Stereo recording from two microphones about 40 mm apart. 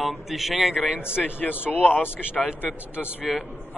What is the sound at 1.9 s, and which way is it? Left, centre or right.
Speech, left.